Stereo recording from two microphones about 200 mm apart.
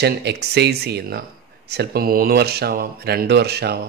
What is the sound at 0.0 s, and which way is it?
A man's voice, 55° right (ahead or behind).